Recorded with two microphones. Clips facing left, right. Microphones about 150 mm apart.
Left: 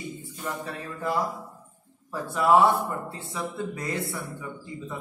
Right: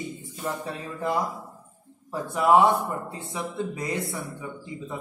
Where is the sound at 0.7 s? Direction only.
25° right (ahead or behind).